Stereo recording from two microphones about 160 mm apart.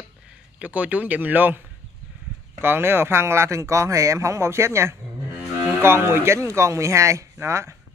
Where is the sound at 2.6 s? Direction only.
15° right (ahead or behind).